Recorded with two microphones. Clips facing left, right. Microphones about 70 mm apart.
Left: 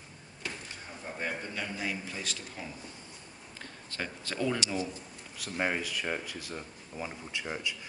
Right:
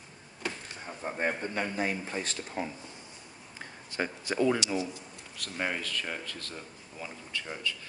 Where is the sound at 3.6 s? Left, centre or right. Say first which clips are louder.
Right 5 dB; centre.